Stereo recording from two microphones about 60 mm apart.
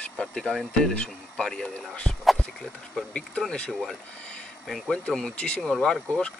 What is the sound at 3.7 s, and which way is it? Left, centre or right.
Speech, centre.